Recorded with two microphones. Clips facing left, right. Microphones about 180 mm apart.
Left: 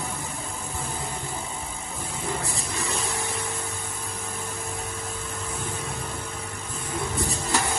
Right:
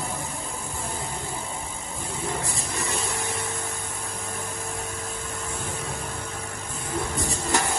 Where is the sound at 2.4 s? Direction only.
15° left (ahead or behind).